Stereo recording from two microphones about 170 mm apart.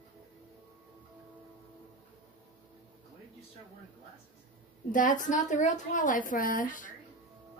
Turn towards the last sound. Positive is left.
turn(degrees=50)  # may be behind; listen again after turning